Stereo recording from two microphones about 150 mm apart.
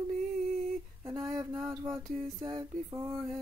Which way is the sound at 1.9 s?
35° right (ahead or behind).